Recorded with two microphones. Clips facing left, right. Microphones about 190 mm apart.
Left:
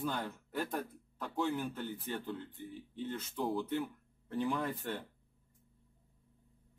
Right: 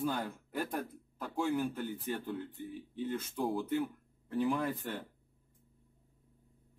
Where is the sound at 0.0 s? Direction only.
10° right (ahead or behind).